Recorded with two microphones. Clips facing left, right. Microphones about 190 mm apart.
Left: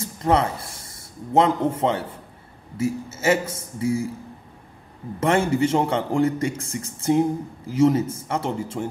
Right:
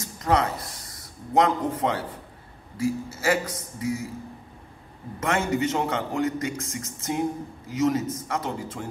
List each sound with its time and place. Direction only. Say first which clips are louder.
0.0 s a man's voice: left 3 dB; 30° left (ahead or behind)
5.2 s a man's voice: left 5 dB; 30° left (ahead or behind)